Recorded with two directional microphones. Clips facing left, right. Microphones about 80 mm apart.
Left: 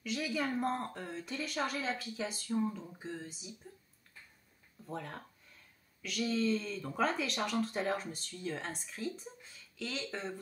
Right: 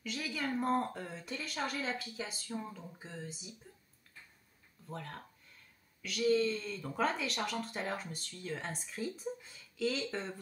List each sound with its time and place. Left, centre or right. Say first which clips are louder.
0.1 s a woman's voice: left 3 dB; centre
4.8 s a woman's voice: left 2 dB; centre